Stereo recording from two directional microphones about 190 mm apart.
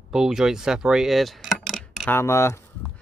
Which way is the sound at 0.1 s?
5° right (ahead or behind).